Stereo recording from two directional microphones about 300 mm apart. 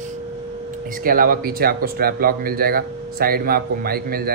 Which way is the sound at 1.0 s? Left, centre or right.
Right.